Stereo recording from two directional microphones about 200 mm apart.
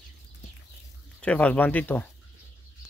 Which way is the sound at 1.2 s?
5° left (ahead or behind).